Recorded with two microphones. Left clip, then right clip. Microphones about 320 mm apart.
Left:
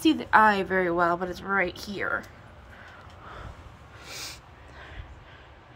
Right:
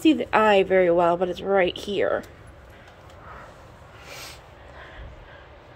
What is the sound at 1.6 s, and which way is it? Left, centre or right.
Speech, centre.